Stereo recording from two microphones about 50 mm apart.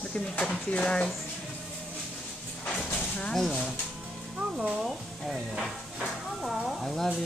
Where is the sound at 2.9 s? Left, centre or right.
Left.